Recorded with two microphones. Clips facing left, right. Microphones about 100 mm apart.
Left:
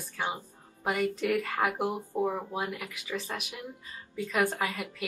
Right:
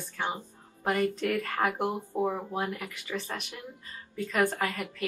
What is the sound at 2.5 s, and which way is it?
Speech, 15° left (ahead or behind).